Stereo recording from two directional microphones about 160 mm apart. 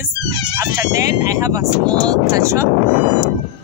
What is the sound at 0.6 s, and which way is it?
Speech, 20° right (ahead or behind).